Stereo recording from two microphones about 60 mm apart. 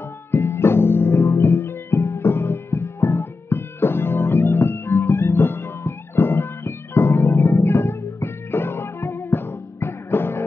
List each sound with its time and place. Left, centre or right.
0.3 s music: left